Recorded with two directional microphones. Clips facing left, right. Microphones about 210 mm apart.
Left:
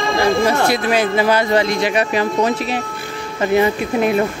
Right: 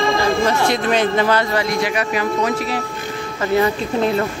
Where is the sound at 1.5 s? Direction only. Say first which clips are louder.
Left 3 dB; 25° left (ahead or behind).